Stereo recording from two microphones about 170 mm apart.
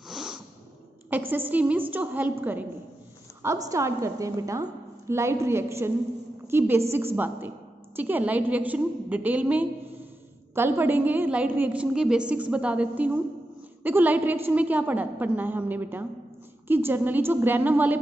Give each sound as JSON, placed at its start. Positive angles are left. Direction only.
{"t": 0.1, "sound": "a sound", "side_deg": -5}
{"t": 1.1, "sound": "a woman's voice", "side_deg": -10}
{"t": 3.4, "sound": "a woman's voice", "side_deg": -20}